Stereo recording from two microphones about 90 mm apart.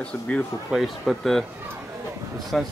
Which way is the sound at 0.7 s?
Centre (ahead or behind).